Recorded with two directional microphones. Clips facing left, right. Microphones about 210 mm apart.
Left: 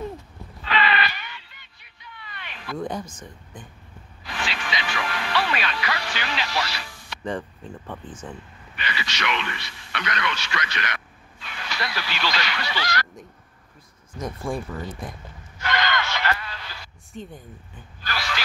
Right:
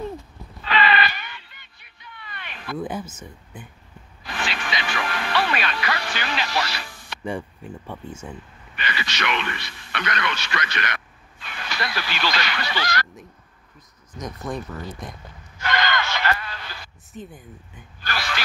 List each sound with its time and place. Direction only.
0.7 s a sound: 35° right (ahead or behind)
1.1 s a sound: 50° right (ahead or behind)
2.8 s speech: 5° right (ahead or behind)
4.3 s music: 55° right (ahead or behind)
7.2 s speech: 10° right (ahead or behind)
8.7 s speech: 55° right (ahead or behind)
14.5 s speech: 10° left (ahead or behind)
15.6 s a sound: 45° right (ahead or behind)
17.1 s speech: centre (ahead or behind)